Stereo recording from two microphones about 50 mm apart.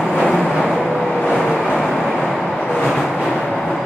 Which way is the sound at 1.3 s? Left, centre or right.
Centre.